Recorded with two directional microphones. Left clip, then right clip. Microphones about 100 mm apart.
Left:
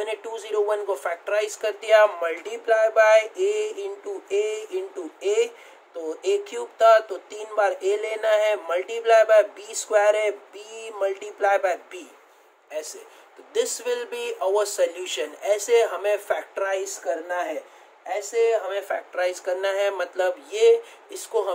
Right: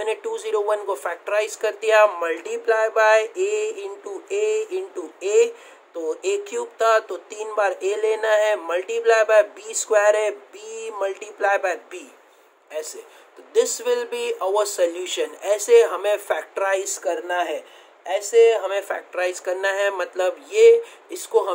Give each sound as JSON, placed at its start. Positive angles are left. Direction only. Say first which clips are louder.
{"t": 0.0, "sound": "speech", "louder": "right 5 dB", "side_deg": -30}
{"t": 16.6, "sound": "speech", "louder": "right 4 dB", "side_deg": -65}
{"t": 18.8, "sound": "speech", "louder": "right 1 dB", "side_deg": -45}
{"t": 19.1, "sound": "speech", "louder": "right 2 dB", "side_deg": -30}